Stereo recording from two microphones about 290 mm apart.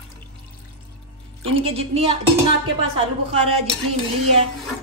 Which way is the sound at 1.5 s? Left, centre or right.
Right.